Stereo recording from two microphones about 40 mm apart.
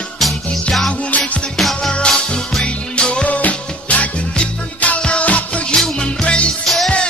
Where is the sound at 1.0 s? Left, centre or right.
Left.